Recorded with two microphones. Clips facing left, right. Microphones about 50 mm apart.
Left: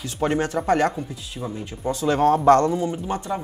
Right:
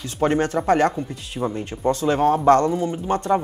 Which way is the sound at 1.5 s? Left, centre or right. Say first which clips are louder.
Right 4 dB; right.